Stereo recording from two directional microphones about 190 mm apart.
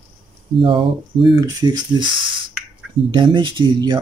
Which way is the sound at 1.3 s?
20° right (ahead or behind).